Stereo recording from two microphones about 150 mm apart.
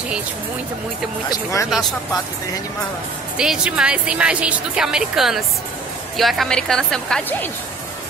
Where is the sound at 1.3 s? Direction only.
20° left (ahead or behind).